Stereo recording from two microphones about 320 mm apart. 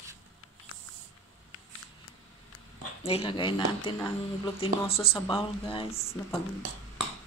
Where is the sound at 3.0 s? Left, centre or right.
Centre.